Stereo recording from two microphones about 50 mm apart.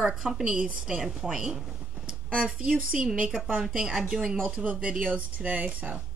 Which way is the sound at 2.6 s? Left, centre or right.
Centre.